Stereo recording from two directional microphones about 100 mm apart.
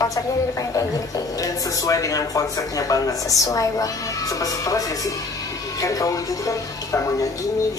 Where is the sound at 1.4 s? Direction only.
35° left (ahead or behind).